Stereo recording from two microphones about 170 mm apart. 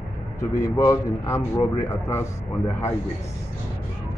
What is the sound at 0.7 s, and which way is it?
Speech, 15° left (ahead or behind).